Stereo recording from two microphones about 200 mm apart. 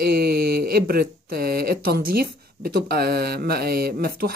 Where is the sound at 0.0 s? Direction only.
50° right (ahead or behind).